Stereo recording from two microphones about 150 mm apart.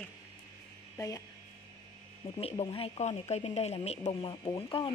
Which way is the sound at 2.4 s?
45° left (ahead or behind).